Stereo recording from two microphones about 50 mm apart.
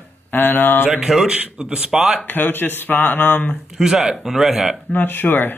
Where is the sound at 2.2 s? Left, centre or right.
Left.